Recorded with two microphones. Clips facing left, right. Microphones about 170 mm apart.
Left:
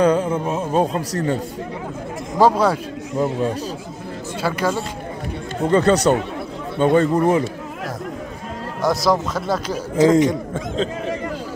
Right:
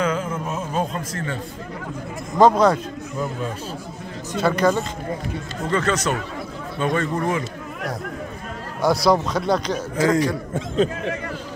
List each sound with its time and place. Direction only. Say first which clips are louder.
0.0 s a man's voice: left 7 dB; 35° left (ahead or behind)
2.3 s speech: right 1 dB; 10° left (ahead or behind)
4.4 s speech: right 3 dB; 10° left (ahead or behind)
5.6 s a man's voice: left 7 dB; 30° left (ahead or behind)
8.8 s speech: right 1 dB; centre (ahead or behind)
9.9 s speech: left 6 dB; 20° left (ahead or behind)